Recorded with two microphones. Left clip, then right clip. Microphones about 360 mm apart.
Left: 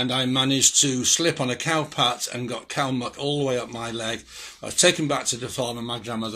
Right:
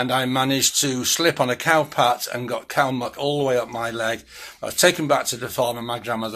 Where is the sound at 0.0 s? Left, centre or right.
Right.